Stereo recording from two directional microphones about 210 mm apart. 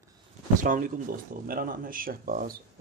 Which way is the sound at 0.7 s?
40° right (ahead or behind).